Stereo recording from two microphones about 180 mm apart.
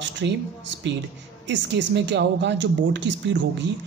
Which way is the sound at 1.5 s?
80° right.